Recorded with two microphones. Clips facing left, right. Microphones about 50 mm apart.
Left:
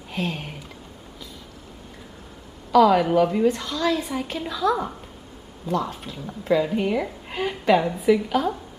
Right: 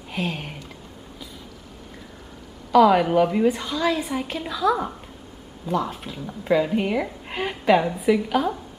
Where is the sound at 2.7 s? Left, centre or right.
Centre.